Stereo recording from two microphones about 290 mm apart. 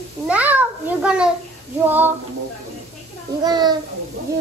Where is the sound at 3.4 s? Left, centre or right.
Centre.